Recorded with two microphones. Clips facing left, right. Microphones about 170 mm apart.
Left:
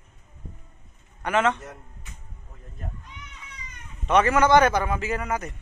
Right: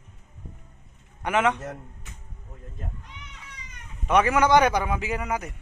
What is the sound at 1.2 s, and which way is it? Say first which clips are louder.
Speech: even; 15° right (ahead or behind).